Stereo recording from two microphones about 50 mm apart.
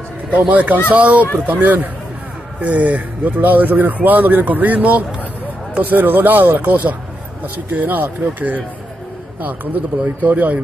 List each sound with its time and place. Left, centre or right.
0.4 s speech: right
1.2 s speech: left
1.5 s speech: right
10.0 s speech: right